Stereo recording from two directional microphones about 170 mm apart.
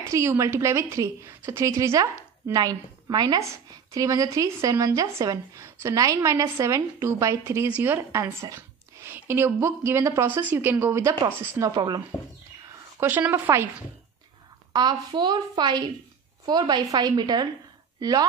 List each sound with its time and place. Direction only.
0.1 s a woman's voice: 15° right (ahead or behind)
13.0 s speech: 10° right (ahead or behind)
14.7 s a woman's voice: 25° right (ahead or behind)